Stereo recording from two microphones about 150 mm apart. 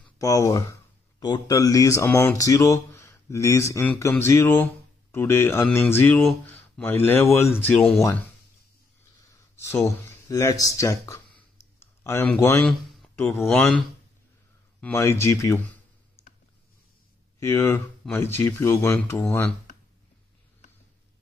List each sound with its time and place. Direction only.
0.2 s speech: 20° left (ahead or behind)
9.3 s speech: 20° left (ahead or behind)
11.3 s clicking: 15° left (ahead or behind)
13.1 s speech: 15° left (ahead or behind)
17.4 s speech: 20° left (ahead or behind)